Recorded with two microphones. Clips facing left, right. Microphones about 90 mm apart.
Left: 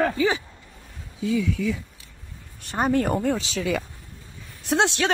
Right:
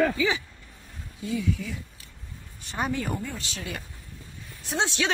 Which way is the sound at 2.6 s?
50° left (ahead or behind).